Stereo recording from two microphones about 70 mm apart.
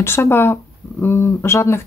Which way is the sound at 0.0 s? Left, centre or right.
Left.